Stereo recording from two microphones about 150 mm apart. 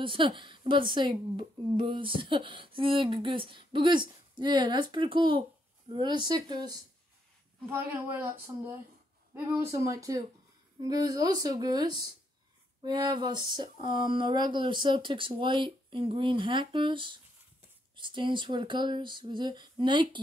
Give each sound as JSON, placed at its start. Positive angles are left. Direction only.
{"t": 0.0, "sound": "a woman's voice", "side_deg": -35}
{"t": 7.7, "sound": "a woman's voice", "side_deg": -15}
{"t": 9.8, "sound": "a woman's voice", "side_deg": -20}